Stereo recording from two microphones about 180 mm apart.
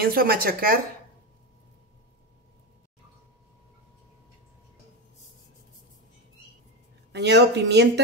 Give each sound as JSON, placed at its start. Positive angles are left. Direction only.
{"t": 0.0, "sound": "speech", "side_deg": -55}
{"t": 7.1, "sound": "speech", "side_deg": -70}